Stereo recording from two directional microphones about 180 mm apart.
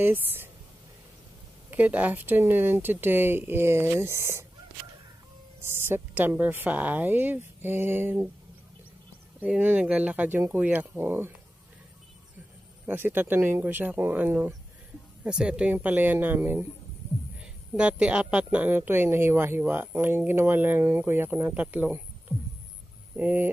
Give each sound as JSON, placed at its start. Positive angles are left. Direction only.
{"t": 0.0, "sound": "speech", "side_deg": -10}
{"t": 1.7, "sound": "speech", "side_deg": -10}
{"t": 5.6, "sound": "speech", "side_deg": -15}
{"t": 9.4, "sound": "speech", "side_deg": -10}
{"t": 12.8, "sound": "speech", "side_deg": -10}
{"t": 23.1, "sound": "speech", "side_deg": -10}